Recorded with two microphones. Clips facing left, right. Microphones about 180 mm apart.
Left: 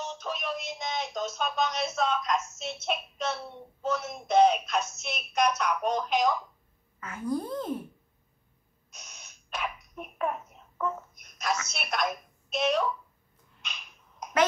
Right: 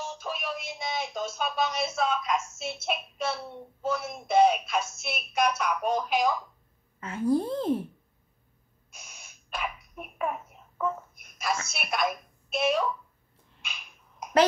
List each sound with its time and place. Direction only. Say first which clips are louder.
0.0 s speech: even; 10° right (ahead or behind)
7.0 s a child's voice: right 6 dB; 30° right (ahead or behind)
8.9 s sneeze: even; 10° right (ahead or behind)
11.6 s speech: right 2 dB; 5° right (ahead or behind)
13.6 s a sound: even; 10° right (ahead or behind)